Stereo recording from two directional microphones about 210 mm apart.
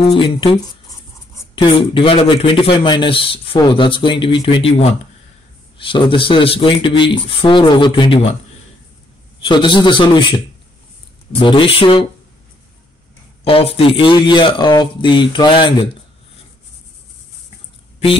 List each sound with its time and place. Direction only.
0.1 s speech: 25° left (ahead or behind)
9.4 s speech: 25° left (ahead or behind)
13.4 s speech: 25° left (ahead or behind)